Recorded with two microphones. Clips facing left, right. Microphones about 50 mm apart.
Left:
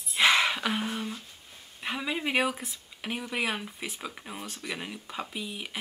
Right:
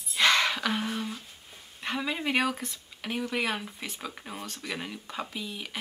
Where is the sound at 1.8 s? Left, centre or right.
Centre.